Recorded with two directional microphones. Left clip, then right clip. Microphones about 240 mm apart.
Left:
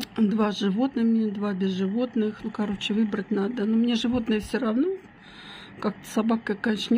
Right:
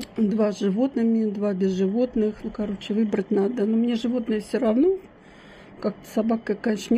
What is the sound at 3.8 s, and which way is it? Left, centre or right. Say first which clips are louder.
Speech: even; left.